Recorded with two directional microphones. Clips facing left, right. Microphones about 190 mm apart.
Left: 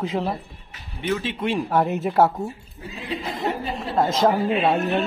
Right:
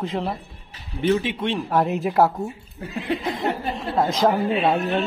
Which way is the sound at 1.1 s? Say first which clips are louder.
Right 4 dB; 15° right (ahead or behind).